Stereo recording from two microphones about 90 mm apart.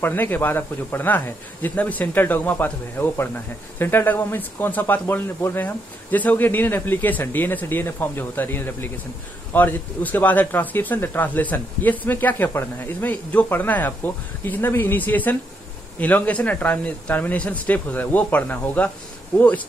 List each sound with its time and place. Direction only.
0.0 s speech: 20° left (ahead or behind)